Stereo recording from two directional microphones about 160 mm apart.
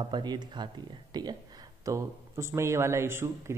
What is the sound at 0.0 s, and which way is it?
Speech, 30° right (ahead or behind).